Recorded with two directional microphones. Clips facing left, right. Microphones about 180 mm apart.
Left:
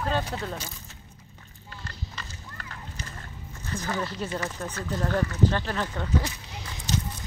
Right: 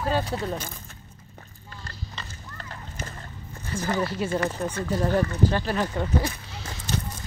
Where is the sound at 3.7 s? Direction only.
10° right (ahead or behind).